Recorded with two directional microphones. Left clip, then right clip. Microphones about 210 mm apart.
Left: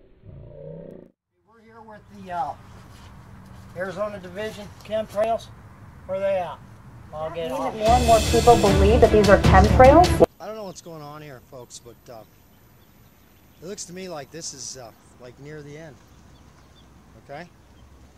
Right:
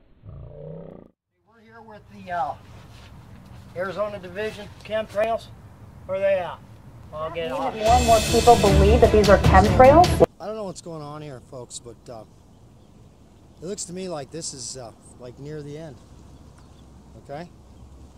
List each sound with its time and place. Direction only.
1.9 s speech: 20° right (ahead or behind)
3.7 s speech: 15° right (ahead or behind)
13.6 s speech: centre (ahead or behind)
17.3 s speech: centre (ahead or behind)